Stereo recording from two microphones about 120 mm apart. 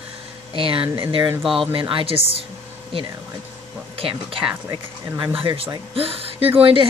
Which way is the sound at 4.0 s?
50° right (ahead or behind).